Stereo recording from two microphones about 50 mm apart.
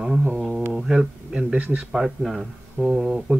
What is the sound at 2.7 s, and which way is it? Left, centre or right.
Speech, right.